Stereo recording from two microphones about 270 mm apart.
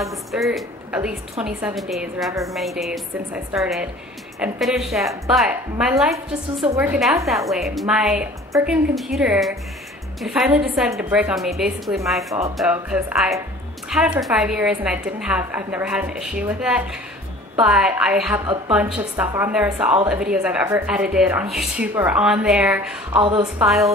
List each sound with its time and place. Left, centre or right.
0.0 s a woman's voice: centre
23.1 s a woman's voice: centre
23.6 s a woman's voice: centre